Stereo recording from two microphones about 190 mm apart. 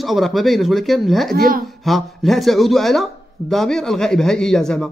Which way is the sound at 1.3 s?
50° right (ahead or behind).